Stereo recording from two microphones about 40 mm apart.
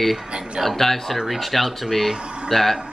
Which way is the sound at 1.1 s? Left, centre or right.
Centre.